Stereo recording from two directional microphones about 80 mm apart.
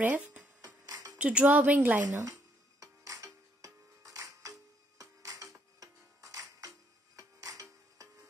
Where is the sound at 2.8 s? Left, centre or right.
Right.